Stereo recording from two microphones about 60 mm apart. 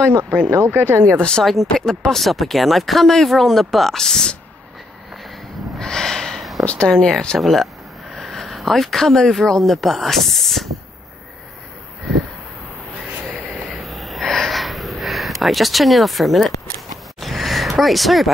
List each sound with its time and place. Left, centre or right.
0.2 s speech: right
1.4 s speech: centre
5.8 s a sound: centre
6.6 s speech: left
6.9 s speech: centre
7.3 s speech: centre
13.3 s snort: centre
17.2 s a sound: centre